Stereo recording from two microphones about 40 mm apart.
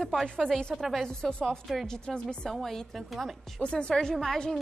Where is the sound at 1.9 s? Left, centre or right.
Centre.